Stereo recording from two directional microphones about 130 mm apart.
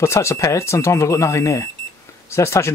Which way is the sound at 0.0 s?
20° left (ahead or behind).